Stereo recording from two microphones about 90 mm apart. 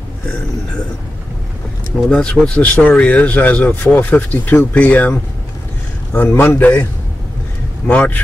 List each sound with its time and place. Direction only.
2.0 s a man's voice: 10° left (ahead or behind)
7.8 s speech: 15° left (ahead or behind)